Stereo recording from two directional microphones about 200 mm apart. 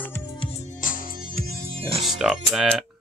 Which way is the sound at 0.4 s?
30° left (ahead or behind).